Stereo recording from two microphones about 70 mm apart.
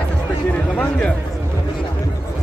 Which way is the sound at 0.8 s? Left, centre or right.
Centre.